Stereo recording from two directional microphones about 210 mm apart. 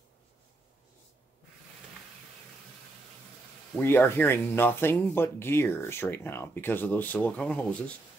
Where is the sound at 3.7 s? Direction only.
10° left (ahead or behind).